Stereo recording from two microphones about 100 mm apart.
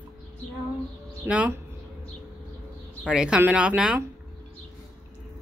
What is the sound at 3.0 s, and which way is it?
Speech, 10° right (ahead or behind).